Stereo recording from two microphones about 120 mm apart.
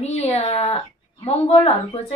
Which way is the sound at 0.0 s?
70° left (ahead or behind).